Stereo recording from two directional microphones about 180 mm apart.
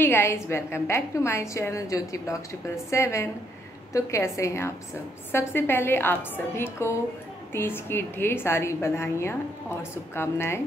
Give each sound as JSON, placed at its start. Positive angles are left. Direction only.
{"t": 0.0, "sound": "a woman's voice", "side_deg": 10}